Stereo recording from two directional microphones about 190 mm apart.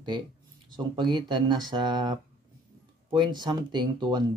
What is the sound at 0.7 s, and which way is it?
Speech, 25° right (ahead or behind).